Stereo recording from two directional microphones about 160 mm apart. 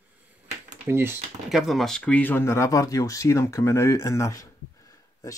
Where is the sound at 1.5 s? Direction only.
Centre (ahead or behind).